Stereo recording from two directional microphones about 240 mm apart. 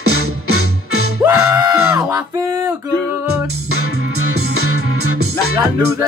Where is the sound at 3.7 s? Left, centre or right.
Right.